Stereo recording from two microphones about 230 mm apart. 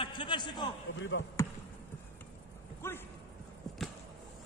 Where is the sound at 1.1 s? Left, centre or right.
Left.